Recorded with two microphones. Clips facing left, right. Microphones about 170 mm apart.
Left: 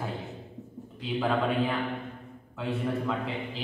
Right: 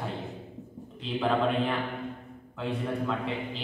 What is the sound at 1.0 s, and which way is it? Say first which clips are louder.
A man's voice: right 1 dB; centre (ahead or behind).